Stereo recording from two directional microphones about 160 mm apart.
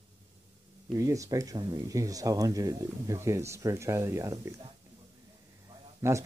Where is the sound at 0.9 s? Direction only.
20° right (ahead or behind).